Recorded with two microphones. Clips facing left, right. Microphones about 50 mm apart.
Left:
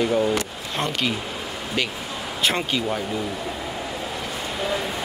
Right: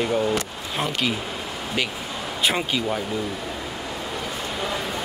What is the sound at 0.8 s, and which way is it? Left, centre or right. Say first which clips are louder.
Speech: even; centre.